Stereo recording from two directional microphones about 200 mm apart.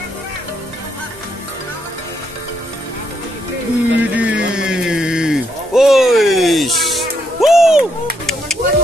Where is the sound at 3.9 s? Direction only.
5° right (ahead or behind).